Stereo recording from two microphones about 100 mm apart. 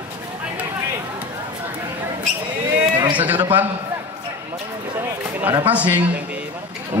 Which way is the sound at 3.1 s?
15° right (ahead or behind).